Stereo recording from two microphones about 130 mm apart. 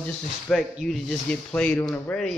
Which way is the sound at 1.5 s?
10° left (ahead or behind).